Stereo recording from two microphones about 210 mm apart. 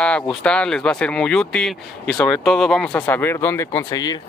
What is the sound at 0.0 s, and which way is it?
Speech, 5° left (ahead or behind).